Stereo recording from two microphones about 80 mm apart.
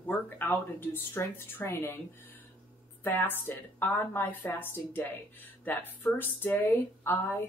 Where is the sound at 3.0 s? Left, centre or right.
Left.